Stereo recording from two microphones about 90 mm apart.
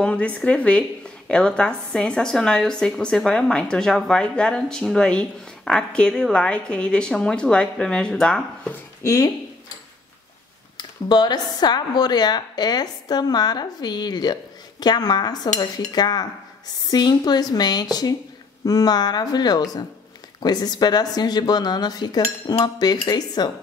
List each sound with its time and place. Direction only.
0.0 s a woman's voice: 15° left (ahead or behind)
9.0 s speech: 35° left (ahead or behind)
10.8 s speech: 50° left (ahead or behind)